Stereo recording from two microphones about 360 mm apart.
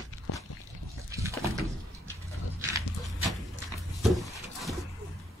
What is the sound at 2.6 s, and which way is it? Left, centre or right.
Dog, centre.